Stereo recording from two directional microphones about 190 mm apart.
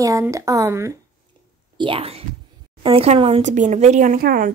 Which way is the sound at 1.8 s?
30° right (ahead or behind).